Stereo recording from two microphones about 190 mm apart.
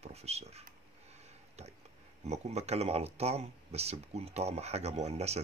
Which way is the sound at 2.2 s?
35° right (ahead or behind).